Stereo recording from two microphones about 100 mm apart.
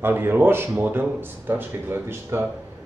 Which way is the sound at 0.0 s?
20° right (ahead or behind).